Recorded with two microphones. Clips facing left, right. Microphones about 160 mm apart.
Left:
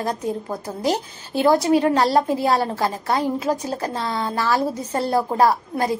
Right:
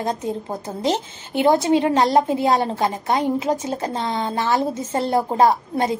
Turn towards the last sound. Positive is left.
turn(degrees=-20)  # may be behind; listen again after turning